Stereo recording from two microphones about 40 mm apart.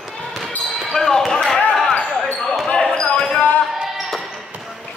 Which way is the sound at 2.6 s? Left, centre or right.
Left.